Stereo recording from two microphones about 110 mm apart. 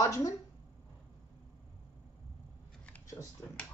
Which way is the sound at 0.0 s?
25° left (ahead or behind).